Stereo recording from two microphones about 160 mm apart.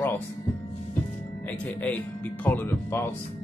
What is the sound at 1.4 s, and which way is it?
Speech, 10° left (ahead or behind).